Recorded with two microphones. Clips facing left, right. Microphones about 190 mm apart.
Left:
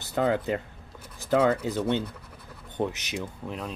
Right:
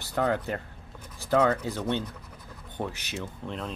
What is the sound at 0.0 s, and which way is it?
Speech, 20° left (ahead or behind).